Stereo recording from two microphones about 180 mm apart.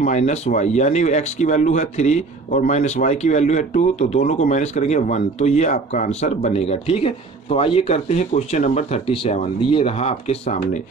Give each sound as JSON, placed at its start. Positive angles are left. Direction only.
{"t": 0.0, "sound": "speech", "side_deg": 40}